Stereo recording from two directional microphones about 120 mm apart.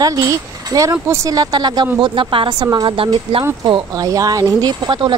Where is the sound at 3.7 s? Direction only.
35° right (ahead or behind).